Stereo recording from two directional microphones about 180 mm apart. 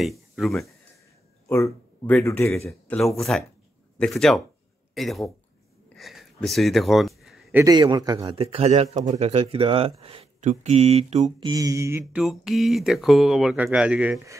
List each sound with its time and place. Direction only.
0.0 s speech: centre (ahead or behind)
1.5 s speech: 15° left (ahead or behind)
2.5 s speech: centre (ahead or behind)
5.9 s a sound: centre (ahead or behind)
7.5 s a man's voice: 20° right (ahead or behind)
8.2 s speech: 35° right (ahead or behind)
11.4 s speech: 20° right (ahead or behind)
12.2 s speech: centre (ahead or behind)